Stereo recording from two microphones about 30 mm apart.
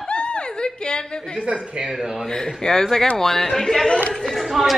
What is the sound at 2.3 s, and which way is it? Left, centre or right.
Speech, left.